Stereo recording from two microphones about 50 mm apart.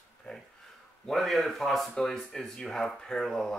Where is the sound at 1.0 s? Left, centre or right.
Centre.